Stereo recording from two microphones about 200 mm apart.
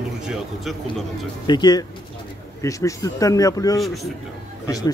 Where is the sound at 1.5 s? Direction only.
20° left (ahead or behind).